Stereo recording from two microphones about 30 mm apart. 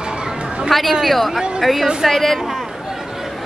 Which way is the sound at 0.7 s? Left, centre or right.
Centre.